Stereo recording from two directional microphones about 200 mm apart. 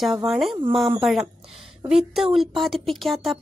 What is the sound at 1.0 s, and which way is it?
Speech, centre (ahead or behind).